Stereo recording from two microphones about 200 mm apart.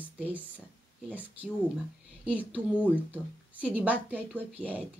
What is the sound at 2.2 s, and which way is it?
Speech, 5° right (ahead or behind).